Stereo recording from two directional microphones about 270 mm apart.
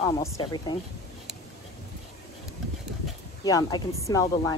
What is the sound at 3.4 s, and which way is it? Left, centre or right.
A woman's voice, centre.